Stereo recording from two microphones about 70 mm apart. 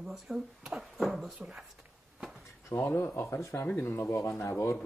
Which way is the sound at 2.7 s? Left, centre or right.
Left.